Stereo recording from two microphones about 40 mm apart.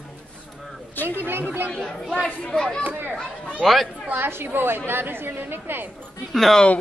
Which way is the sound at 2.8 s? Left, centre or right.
Right.